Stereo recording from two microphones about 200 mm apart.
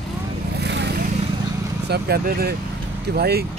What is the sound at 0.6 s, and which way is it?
Vehicle, 60° right (ahead or behind).